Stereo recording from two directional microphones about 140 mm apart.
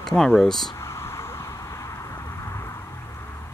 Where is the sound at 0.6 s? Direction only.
20° left (ahead or behind).